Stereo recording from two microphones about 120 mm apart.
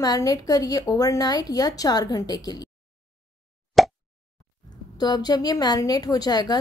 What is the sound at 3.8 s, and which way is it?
Plop, centre (ahead or behind).